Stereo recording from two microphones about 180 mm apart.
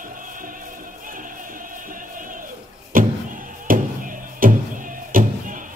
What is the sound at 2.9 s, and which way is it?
Music, 50° right (ahead or behind).